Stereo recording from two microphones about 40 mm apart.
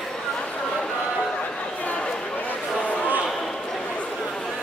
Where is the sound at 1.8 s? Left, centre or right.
Left.